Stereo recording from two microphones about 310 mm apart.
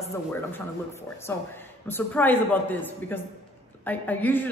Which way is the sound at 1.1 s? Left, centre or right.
Centre.